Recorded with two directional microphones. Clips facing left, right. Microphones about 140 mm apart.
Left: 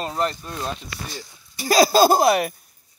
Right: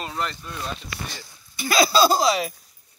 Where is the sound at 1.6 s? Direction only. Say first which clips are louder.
Left 3 dB; 40° left (ahead or behind).